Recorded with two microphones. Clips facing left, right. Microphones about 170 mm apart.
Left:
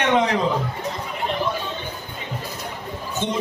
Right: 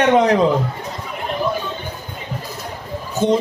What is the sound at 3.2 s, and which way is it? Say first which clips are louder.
Speech: right 11 dB; 40° right (ahead or behind).